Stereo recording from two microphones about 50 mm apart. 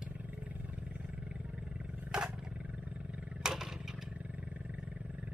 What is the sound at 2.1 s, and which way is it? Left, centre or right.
Roar, centre.